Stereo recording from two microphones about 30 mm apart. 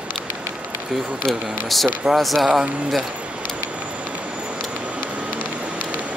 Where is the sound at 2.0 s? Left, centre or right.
Centre.